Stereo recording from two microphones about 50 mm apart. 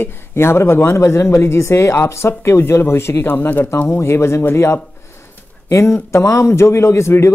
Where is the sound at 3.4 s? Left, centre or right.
Left.